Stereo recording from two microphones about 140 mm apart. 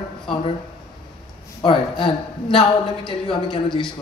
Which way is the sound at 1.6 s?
45° left (ahead or behind).